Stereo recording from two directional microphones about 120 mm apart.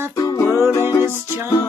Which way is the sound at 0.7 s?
25° left (ahead or behind).